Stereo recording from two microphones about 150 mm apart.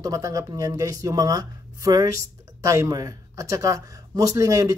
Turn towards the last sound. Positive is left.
turn(degrees=-20)  # may be behind; listen again after turning